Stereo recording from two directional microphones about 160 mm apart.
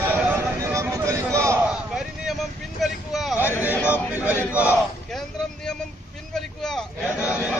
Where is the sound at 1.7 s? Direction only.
Centre (ahead or behind).